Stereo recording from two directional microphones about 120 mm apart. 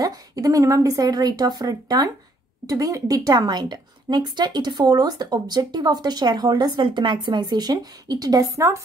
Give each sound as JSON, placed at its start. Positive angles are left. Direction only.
{"t": 0.0, "sound": "a woman's voice", "side_deg": -30}